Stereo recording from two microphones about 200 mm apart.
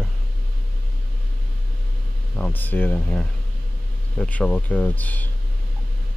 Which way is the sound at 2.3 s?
10° left (ahead or behind).